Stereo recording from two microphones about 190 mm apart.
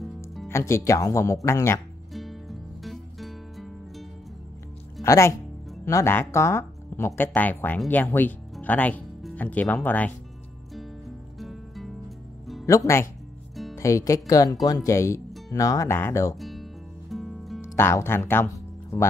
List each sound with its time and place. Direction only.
0.5 s speech: 15° left (ahead or behind)
2.1 s music: centre (ahead or behind)
5.0 s speech: 15° left (ahead or behind)
11.3 s music: centre (ahead or behind)
12.6 s speech: 15° left (ahead or behind)
16.3 s music: centre (ahead or behind)
17.6 s speech: 15° left (ahead or behind)